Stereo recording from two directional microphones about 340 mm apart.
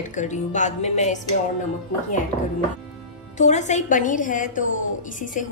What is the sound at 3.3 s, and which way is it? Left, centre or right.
A woman's voice, left.